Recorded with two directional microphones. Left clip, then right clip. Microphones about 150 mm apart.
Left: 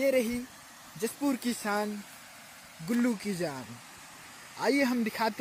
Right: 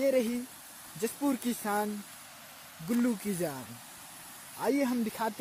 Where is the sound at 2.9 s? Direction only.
Centre (ahead or behind).